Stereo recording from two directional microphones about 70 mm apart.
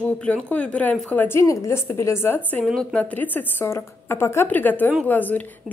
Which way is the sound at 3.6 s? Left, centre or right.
Left.